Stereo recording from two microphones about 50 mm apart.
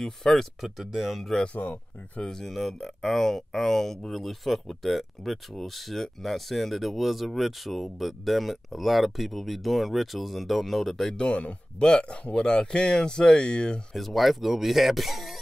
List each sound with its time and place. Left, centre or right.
0.0 s speech: centre
1.4 s speech: left
2.2 s speech: centre
11.1 s speech: left
13.9 s speech: centre